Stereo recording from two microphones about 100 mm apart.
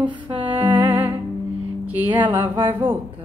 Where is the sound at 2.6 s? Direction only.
20° right (ahead or behind).